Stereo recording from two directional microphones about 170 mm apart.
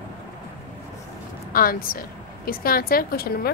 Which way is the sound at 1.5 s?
55° left (ahead or behind).